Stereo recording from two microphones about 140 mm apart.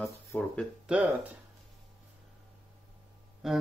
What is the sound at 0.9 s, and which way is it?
Speech, 5° right (ahead or behind).